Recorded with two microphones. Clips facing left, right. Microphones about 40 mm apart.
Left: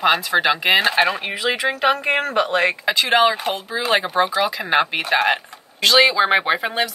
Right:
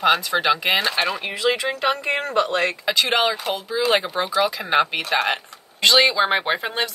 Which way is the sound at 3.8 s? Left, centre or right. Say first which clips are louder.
Left 2 dB; centre.